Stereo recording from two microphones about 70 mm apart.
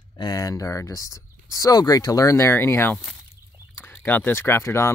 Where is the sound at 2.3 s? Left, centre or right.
Left.